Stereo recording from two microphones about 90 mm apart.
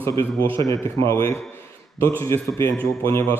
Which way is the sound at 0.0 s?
30° left (ahead or behind).